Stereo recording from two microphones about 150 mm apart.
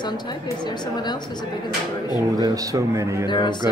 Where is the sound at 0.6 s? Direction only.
30° left (ahead or behind).